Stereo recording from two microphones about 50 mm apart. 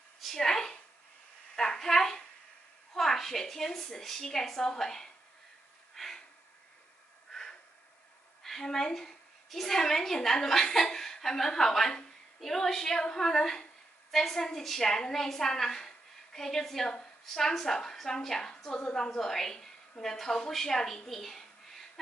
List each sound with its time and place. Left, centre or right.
0.2 s speech: centre
1.5 s a sound: centre
3.0 s a woman's voice: centre
5.9 s a sound: centre
8.4 s a woman's voice: centre
19.0 s a woman's voice: centre